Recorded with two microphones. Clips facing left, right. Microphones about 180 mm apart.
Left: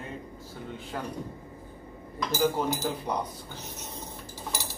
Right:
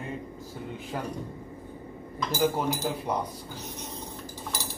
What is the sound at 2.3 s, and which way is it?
Speech, 10° right (ahead or behind).